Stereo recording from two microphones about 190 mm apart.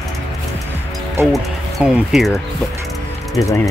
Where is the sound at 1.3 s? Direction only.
Centre (ahead or behind).